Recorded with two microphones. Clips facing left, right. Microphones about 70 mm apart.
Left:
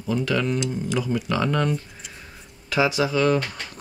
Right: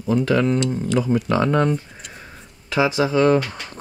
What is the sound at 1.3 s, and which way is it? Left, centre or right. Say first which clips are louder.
Speech: right 4 dB; right.